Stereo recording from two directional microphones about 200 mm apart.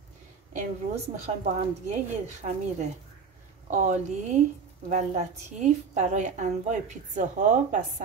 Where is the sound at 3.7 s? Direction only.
35° right (ahead or behind).